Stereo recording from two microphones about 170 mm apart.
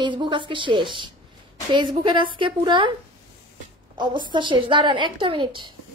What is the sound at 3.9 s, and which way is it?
A woman's voice, 25° right (ahead or behind).